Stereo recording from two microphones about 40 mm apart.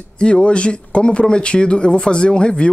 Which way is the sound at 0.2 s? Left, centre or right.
Left.